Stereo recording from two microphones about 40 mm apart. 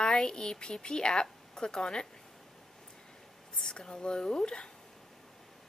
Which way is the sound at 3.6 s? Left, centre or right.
Centre.